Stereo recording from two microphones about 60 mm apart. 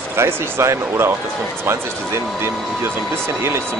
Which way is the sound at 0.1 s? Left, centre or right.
Right.